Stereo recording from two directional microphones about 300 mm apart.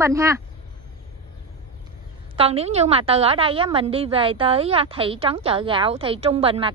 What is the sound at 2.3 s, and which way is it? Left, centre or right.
A woman's voice, centre.